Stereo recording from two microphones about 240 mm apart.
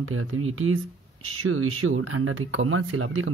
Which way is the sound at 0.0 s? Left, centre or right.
Right.